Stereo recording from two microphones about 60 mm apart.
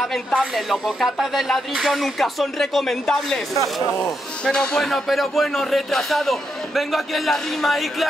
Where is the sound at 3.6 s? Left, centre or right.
Left.